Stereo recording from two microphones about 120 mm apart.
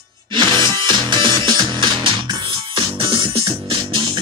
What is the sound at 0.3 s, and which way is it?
Music, 40° right (ahead or behind).